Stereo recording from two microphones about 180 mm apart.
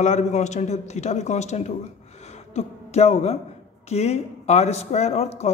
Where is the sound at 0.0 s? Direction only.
40° left (ahead or behind).